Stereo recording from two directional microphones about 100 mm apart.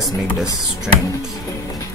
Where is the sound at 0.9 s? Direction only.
5° right (ahead or behind).